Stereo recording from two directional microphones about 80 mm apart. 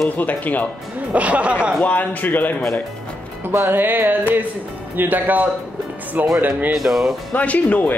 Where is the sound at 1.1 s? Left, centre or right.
Centre.